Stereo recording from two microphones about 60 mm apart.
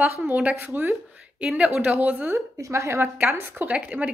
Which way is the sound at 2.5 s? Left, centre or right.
Right.